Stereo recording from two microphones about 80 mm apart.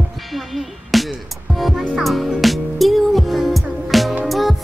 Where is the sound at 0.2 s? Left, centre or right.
Centre.